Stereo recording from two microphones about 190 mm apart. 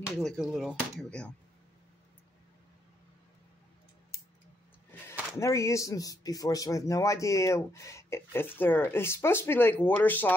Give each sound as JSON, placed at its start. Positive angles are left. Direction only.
{"t": 0.0, "sound": "speech", "side_deg": 0}
{"t": 5.4, "sound": "speech", "side_deg": 15}